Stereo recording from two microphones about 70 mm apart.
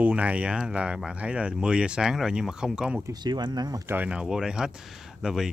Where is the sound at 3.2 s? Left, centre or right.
Right.